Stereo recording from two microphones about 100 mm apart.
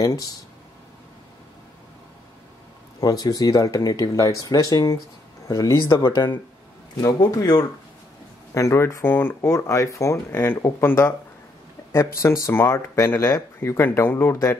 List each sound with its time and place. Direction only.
0.0 s speech: 35° left (ahead or behind)
3.0 s speech: 40° left (ahead or behind)
6.0 s speech: 50° left (ahead or behind)
7.0 s speech: 40° left (ahead or behind)